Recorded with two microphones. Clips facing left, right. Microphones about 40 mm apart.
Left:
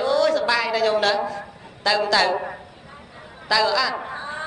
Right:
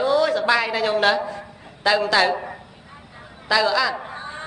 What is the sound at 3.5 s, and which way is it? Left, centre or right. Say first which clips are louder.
Speech: right 1 dB; centre.